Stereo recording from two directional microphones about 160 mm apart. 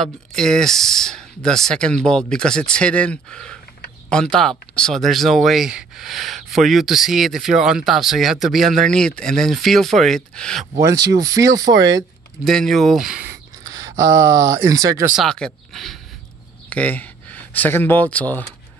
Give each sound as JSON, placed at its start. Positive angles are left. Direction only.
{"t": 0.0, "sound": "speech", "side_deg": 5}
{"t": 10.8, "sound": "speech", "side_deg": -20}
{"t": 12.4, "sound": "speech", "side_deg": 0}
{"t": 13.3, "sound": "speech", "side_deg": -20}
{"t": 15.1, "sound": "speech", "side_deg": 5}
{"t": 16.6, "sound": "a sound", "side_deg": 10}
{"t": 18.1, "sound": "speech", "side_deg": 10}